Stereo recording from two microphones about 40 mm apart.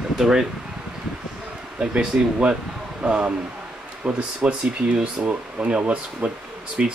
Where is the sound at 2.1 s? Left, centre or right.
Right.